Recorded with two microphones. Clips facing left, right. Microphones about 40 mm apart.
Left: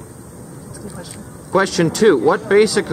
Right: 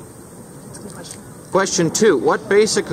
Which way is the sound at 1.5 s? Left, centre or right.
Centre.